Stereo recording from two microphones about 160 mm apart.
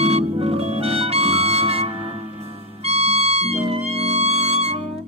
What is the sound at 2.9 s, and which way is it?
Music, 40° right (ahead or behind).